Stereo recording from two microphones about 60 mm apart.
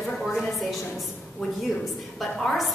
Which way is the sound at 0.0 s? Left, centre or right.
Centre.